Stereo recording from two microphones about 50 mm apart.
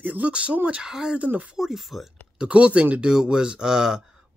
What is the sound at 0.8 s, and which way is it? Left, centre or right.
Speech, centre.